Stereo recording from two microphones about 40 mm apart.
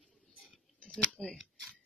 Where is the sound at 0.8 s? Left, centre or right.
Left.